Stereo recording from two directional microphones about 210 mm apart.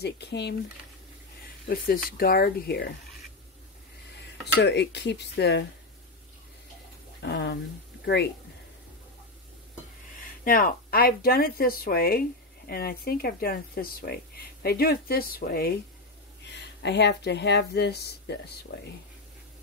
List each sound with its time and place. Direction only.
0.0 s speech: 55° left (ahead or behind)
2.0 s speech: 45° left (ahead or behind)
4.6 s speech: 55° left (ahead or behind)
7.2 s speech: 55° left (ahead or behind)
10.2 s speech: 40° left (ahead or behind)